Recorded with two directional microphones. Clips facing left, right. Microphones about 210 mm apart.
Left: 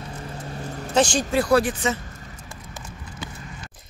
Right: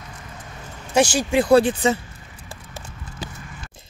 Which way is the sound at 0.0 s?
30° left (ahead or behind).